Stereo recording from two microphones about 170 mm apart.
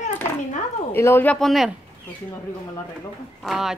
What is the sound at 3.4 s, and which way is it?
Speech, centre (ahead or behind).